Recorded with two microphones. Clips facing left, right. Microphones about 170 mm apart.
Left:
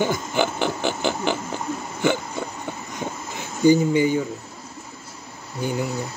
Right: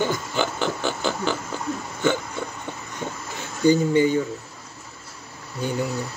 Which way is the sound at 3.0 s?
15° left (ahead or behind).